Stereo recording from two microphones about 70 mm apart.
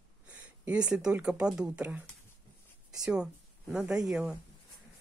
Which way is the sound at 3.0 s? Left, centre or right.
Centre.